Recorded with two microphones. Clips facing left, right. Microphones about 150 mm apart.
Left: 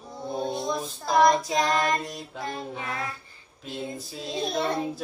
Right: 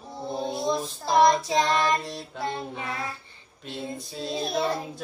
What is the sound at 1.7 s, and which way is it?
Female singing, centre (ahead or behind).